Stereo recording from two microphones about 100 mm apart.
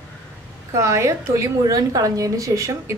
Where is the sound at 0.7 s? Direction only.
30° right (ahead or behind).